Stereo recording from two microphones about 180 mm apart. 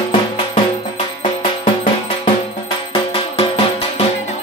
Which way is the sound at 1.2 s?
25° left (ahead or behind).